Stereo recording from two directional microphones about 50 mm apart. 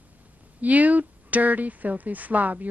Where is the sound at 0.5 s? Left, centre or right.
Right.